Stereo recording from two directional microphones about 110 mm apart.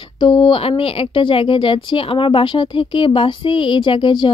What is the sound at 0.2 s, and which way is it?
A woman's voice, 45° left (ahead or behind).